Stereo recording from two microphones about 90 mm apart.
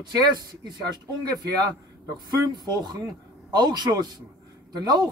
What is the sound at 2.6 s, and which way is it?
Speech, 50° right (ahead or behind).